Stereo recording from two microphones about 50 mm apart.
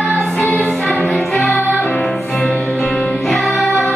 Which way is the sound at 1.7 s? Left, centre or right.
Left.